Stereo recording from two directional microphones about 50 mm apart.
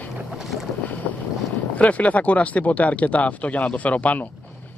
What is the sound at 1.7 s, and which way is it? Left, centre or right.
Speech, left.